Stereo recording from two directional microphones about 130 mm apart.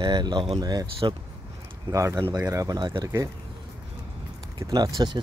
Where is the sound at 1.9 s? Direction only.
25° right (ahead or behind).